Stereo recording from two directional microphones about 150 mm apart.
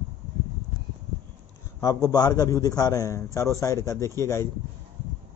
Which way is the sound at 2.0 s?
25° left (ahead or behind).